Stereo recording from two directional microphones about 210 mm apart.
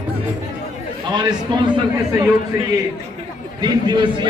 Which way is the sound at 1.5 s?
20° right (ahead or behind).